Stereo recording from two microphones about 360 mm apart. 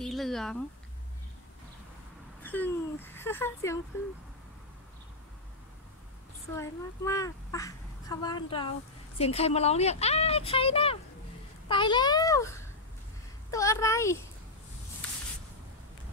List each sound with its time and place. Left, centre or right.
0.0 s speech: centre
2.4 s a sound: centre
3.2 s a child's voice: centre
6.5 s a child's voice: centre